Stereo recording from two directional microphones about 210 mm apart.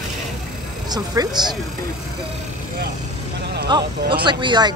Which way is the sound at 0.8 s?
20° right (ahead or behind).